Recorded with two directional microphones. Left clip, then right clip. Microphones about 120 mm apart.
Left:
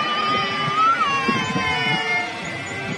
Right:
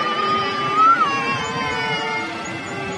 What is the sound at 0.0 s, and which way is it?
Music, 15° left (ahead or behind).